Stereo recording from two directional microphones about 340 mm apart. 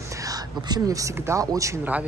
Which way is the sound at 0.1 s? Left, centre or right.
Centre.